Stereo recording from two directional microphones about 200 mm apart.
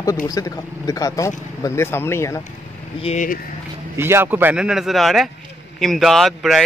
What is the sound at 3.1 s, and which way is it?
Speech, 40° left (ahead or behind).